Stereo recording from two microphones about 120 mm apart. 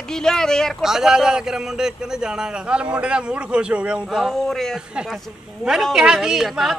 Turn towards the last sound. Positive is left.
turn(degrees=-5)  # may be behind; listen again after turning